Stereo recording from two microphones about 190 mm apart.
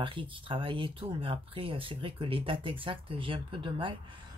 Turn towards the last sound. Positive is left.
turn(degrees=-25)  # may be behind; listen again after turning